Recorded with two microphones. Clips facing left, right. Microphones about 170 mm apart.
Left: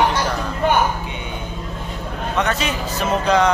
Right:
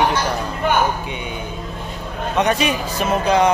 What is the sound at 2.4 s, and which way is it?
A man's voice, 15° right (ahead or behind).